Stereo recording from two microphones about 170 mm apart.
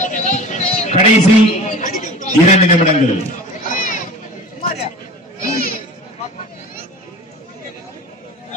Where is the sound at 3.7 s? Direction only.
50° left (ahead or behind).